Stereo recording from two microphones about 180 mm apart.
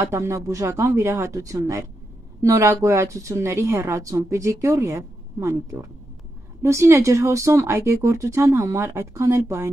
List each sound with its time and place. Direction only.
0.0 s a woman's voice: 15° right (ahead or behind)